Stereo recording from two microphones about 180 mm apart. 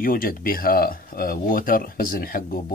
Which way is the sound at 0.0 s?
50° left (ahead or behind).